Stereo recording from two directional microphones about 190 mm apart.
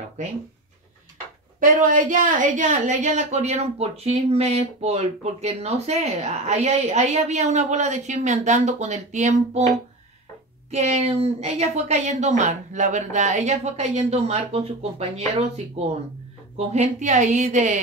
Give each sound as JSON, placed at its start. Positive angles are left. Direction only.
{"t": 1.6, "sound": "a woman's voice", "side_deg": -45}